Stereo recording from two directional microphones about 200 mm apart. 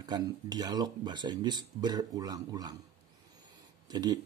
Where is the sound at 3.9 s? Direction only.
20° right (ahead or behind).